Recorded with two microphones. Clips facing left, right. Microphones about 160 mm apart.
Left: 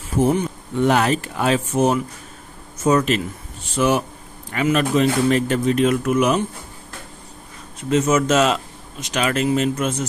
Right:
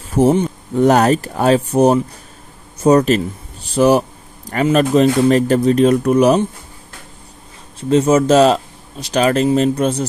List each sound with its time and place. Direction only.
0.1 s speech: 40° right (ahead or behind)
7.9 s speech: 30° right (ahead or behind)